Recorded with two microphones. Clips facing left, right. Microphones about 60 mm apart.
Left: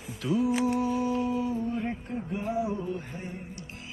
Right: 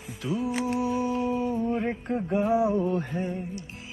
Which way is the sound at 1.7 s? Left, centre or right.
Right.